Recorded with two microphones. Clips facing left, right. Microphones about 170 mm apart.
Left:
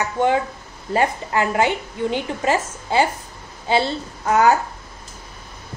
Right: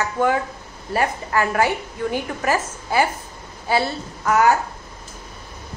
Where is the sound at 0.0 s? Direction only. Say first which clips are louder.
Left 1 dB; 25° left (ahead or behind).